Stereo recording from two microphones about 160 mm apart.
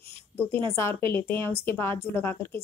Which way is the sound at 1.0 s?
10° left (ahead or behind).